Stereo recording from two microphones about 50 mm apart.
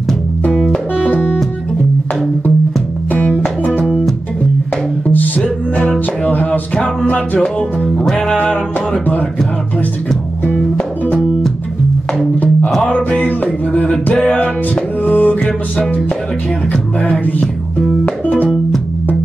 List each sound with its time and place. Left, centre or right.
5.4 s music: left
8.0 s music: centre
8.4 s music: centre
12.8 s music: left
14.1 s music: left
15.0 s music: left
17.0 s music: left